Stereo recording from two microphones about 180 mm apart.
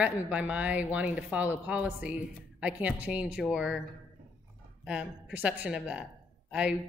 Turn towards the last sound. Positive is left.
turn(degrees=-5)  # may be behind; listen again after turning